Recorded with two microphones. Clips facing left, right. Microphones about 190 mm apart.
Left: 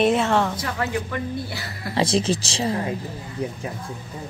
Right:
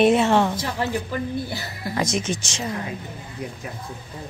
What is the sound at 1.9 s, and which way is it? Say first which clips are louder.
Speech: left 4 dB; 30° left (ahead or behind).